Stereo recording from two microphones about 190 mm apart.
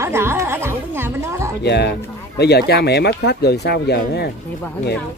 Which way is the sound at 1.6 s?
65° left (ahead or behind).